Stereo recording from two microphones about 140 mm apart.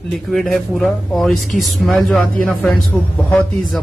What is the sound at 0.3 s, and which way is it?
A man's voice, centre (ahead or behind).